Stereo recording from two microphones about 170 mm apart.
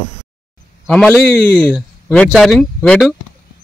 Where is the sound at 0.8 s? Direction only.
Centre (ahead or behind).